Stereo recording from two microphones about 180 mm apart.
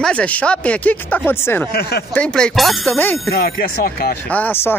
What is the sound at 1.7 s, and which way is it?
Speech, 60° left (ahead or behind).